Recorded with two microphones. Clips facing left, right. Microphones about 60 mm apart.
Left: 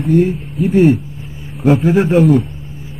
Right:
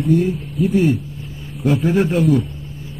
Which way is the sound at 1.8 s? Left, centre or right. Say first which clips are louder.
Left 3 dB; centre.